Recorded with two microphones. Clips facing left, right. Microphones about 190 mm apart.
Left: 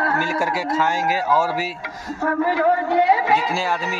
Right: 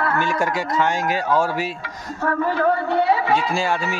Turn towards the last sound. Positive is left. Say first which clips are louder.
# left 1 dB
turn(degrees=15)  # may be behind; listen again after turning